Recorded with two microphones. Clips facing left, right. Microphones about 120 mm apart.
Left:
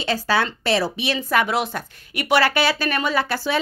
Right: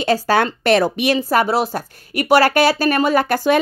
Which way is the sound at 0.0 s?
45° right (ahead or behind).